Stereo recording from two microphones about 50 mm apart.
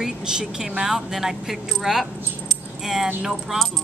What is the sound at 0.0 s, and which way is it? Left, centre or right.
Speech, centre.